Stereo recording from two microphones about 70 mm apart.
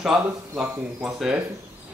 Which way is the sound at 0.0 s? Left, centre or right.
Centre.